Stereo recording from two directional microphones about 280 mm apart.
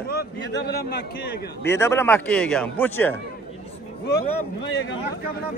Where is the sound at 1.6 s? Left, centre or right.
Centre.